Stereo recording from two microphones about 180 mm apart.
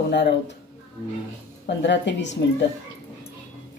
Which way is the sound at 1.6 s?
75° left (ahead or behind).